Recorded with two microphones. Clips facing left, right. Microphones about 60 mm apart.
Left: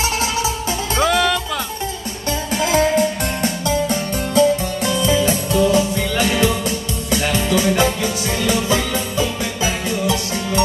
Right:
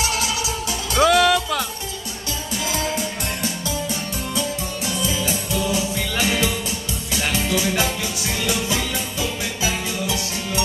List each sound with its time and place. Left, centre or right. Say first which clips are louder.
0.0 s music: left 4 dB; left
1.0 s music: right 2 dB; centre
2.5 s music: left 9 dB; left
7.3 s music: left 5 dB; left